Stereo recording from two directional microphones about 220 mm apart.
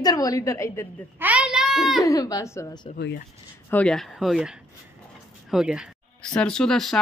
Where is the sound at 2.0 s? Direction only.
15° left (ahead or behind).